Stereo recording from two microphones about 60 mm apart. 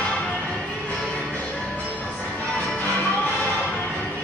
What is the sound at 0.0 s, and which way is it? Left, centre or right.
Music, centre.